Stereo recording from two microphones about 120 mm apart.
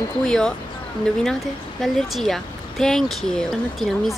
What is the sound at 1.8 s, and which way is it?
Speech, centre (ahead or behind).